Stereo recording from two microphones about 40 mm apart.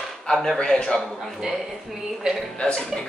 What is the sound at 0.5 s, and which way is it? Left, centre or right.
Speech, left.